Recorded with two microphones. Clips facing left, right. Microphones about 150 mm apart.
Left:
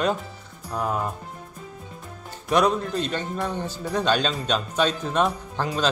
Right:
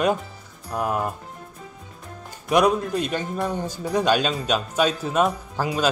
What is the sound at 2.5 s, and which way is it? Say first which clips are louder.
A man's voice: right 2 dB; 10° right (ahead or behind).